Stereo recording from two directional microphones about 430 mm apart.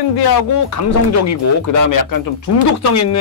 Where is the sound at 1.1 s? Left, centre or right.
Left.